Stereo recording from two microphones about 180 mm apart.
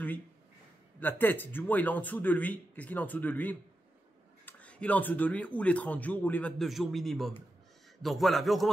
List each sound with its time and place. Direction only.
0.9 s a man's voice: 10° left (ahead or behind)